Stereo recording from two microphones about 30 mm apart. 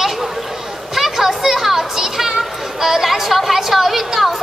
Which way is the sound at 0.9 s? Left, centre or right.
Centre.